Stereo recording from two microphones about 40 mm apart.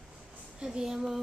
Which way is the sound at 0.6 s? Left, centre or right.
Centre.